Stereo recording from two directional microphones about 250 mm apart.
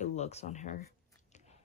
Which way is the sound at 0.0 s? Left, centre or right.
Left.